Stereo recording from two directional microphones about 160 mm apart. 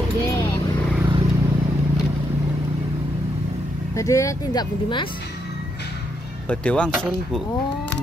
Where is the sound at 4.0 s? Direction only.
20° left (ahead or behind).